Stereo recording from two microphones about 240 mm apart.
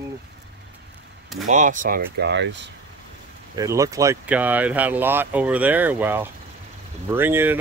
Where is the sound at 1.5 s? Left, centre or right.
Right.